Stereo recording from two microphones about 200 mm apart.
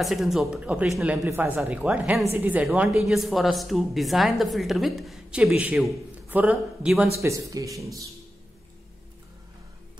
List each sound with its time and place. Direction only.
0.0 s speech: centre (ahead or behind)
1.2 s speech: 10° right (ahead or behind)
7.2 s speech: 15° right (ahead or behind)